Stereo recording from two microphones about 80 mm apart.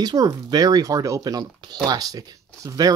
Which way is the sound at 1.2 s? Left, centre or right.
Right.